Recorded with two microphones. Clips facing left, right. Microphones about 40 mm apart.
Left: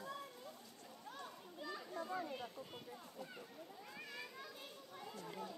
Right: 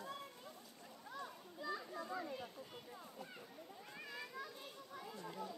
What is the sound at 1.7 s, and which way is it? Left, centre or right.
Children playing, centre.